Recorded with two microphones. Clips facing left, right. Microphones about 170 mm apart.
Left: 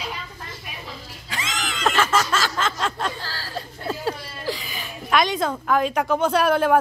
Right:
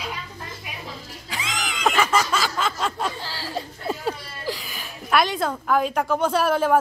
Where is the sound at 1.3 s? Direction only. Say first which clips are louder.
Even; 10° right (ahead or behind).